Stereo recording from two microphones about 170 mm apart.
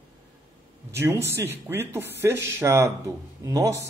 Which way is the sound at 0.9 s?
15° right (ahead or behind).